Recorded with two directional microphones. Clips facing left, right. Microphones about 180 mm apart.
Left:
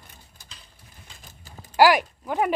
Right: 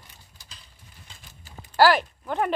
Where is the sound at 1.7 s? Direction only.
15° left (ahead or behind).